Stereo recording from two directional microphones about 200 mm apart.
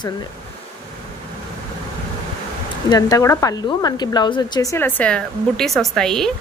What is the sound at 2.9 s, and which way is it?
A woman's voice, 20° left (ahead or behind).